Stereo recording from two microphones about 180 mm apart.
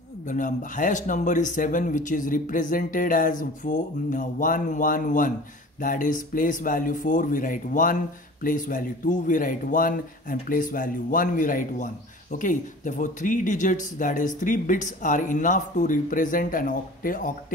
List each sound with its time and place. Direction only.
0.3 s speech: 45° left (ahead or behind)